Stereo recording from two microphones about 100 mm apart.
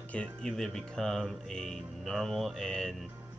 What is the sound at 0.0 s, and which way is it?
Music, 15° left (ahead or behind).